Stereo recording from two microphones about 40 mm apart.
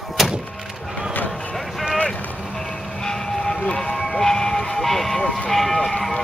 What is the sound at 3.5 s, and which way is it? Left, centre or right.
Music, left.